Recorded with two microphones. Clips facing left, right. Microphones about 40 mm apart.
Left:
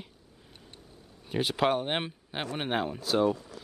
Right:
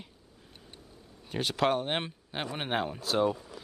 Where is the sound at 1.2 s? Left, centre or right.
Centre.